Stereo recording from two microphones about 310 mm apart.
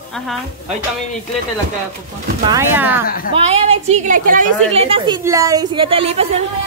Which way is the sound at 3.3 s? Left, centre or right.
Centre.